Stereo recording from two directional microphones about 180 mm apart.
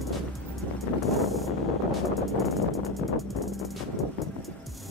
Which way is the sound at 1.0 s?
Centre (ahead or behind).